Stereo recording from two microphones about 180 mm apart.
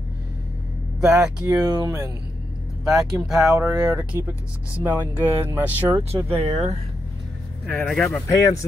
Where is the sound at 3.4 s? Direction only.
15° right (ahead or behind).